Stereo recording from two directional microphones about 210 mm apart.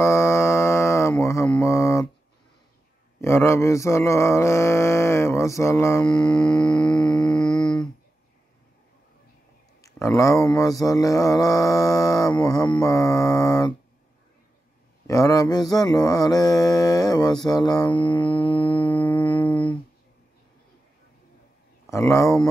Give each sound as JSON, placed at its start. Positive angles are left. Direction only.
{"t": 0.0, "sound": "mantra", "side_deg": 15}
{"t": 3.2, "sound": "mantra", "side_deg": 10}
{"t": 6.5, "sound": "a sound", "side_deg": 20}
{"t": 7.2, "sound": "humming", "side_deg": 0}
{"t": 9.9, "sound": "mantra", "side_deg": 15}
{"t": 15.0, "sound": "mantra", "side_deg": 15}
{"t": 18.9, "sound": "music", "side_deg": 5}
{"t": 21.8, "sound": "mantra", "side_deg": 15}